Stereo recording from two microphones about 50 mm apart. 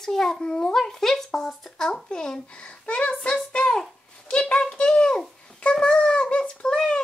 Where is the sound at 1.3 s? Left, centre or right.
Centre; by 3.3 s left.